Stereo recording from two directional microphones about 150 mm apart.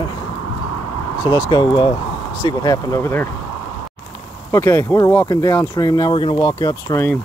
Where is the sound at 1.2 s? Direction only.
25° left (ahead or behind).